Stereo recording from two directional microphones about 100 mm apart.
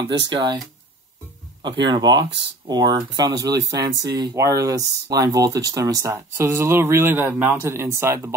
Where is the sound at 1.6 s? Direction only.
50° right (ahead or behind).